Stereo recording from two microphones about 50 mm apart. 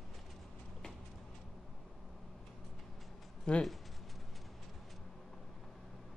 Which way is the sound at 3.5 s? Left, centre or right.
Left.